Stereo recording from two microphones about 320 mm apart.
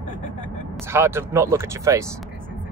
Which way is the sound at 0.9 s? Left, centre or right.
Centre.